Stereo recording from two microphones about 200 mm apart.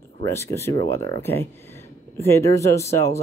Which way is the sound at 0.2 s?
15° left (ahead or behind).